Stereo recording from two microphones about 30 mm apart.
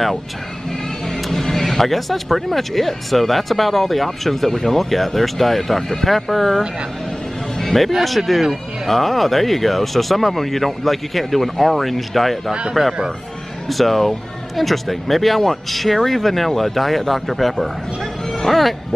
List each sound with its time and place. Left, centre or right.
1.0 s speech: centre
7.6 s speech: centre
13.7 s speech: centre